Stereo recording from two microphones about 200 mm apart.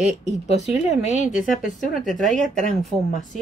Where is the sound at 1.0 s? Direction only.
35° left (ahead or behind).